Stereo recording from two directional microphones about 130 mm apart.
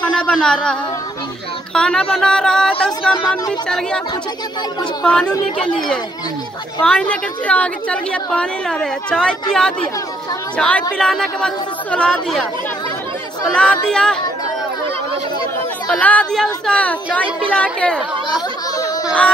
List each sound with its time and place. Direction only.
0.0 s a woman's voice: 5° left (ahead or behind)
5.0 s a woman's voice: 5° left (ahead or behind)
13.5 s a woman's voice: 10° left (ahead or behind)
15.9 s a woman's voice: 10° left (ahead or behind)
18.3 s a sound: 30° left (ahead or behind)